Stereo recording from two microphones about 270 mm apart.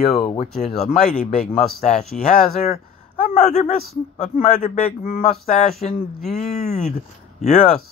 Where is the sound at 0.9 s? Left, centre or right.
Left.